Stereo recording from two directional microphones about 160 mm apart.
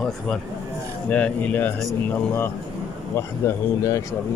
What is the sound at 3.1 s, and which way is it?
Speech, 20° left (ahead or behind).